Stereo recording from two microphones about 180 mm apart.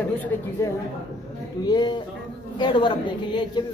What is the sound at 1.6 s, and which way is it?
A woman's voice, 25° left (ahead or behind).